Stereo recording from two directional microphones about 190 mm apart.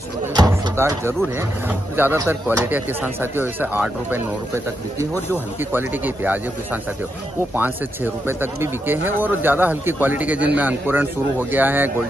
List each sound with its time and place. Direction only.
0.4 s a sound: 15° right (ahead or behind)
1.7 s a man's voice: 10° right (ahead or behind)
5.6 s a man's voice: 10° right (ahead or behind)